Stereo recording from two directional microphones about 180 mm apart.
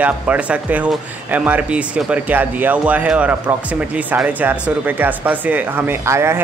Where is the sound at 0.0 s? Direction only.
10° right (ahead or behind).